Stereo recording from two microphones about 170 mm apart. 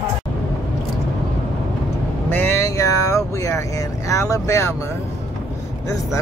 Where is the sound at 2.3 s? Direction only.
15° left (ahead or behind).